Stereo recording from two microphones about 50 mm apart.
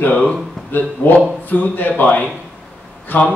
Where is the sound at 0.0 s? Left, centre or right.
Left.